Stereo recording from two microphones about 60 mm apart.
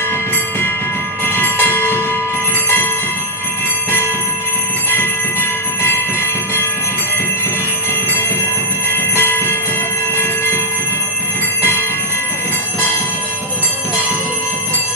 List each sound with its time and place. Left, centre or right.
1.4 s train: left
9.1 s train: left
10.1 s a sound: left